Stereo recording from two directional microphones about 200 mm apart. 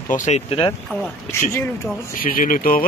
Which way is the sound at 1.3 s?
15° left (ahead or behind).